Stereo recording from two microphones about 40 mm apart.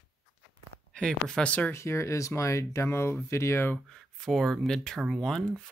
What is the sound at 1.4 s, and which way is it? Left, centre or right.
Speech, left.